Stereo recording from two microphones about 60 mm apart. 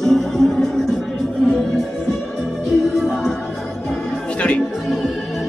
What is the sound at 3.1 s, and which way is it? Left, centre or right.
Music, centre.